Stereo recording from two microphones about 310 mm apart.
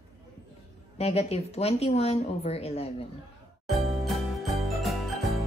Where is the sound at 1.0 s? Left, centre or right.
Centre.